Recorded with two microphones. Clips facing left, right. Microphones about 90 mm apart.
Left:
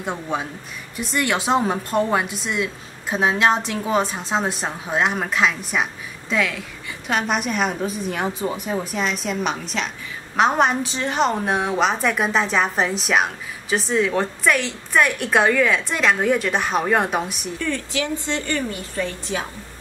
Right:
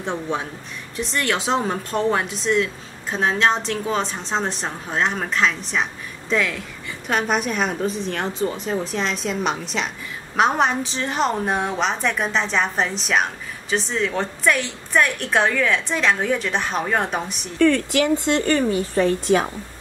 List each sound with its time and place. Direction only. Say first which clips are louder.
0.0 s a woman's voice: even; 5° left (ahead or behind)
17.6 s speech: right 9 dB; 65° right (ahead or behind)